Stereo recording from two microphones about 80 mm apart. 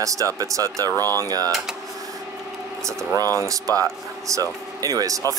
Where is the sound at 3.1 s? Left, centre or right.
Right.